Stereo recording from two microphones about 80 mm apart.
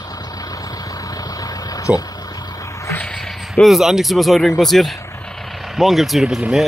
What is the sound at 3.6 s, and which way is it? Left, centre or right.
Speech, centre.